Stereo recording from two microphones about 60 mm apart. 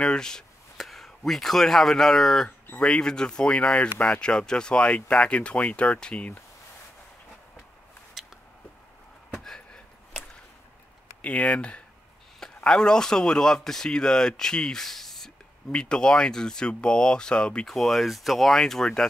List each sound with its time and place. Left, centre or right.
0.0 s speech: centre
8.2 s a sound: centre
11.2 s speech: left; by 15.3 s centre
15.7 s speech: centre
17.6 s speech: centre